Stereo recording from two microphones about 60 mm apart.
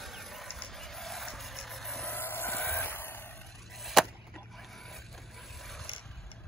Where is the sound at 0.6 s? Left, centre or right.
Centre.